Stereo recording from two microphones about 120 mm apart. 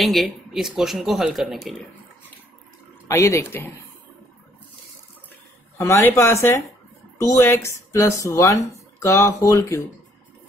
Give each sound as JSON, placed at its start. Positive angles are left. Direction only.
{"t": 0.0, "sound": "speech", "side_deg": 0}
{"t": 3.1, "sound": "speech", "side_deg": 25}
{"t": 5.8, "sound": "speech", "side_deg": 25}